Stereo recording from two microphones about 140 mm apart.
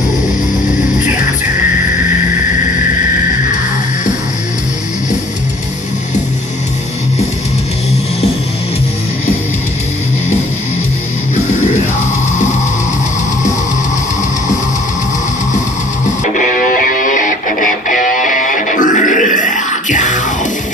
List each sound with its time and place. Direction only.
16.3 s music: 75° left (ahead or behind)